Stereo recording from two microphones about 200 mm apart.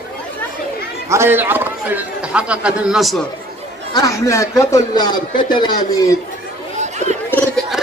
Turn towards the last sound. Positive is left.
turn(degrees=10)  # may be behind; listen again after turning